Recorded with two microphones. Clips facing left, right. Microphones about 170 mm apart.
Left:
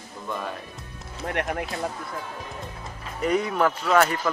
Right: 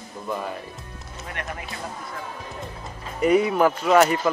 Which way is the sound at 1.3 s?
60° left (ahead or behind).